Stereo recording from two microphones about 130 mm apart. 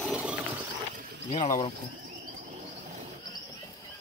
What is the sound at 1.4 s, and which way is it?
Speech, 35° left (ahead or behind).